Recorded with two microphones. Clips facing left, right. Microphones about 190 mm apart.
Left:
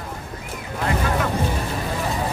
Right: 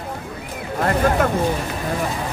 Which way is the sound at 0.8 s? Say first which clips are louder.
Right 5 dB; 50° right (ahead or behind).